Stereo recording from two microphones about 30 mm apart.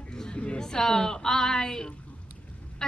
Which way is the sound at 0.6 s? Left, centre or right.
Left.